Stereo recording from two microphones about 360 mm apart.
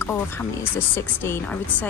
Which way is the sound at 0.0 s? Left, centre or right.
Centre.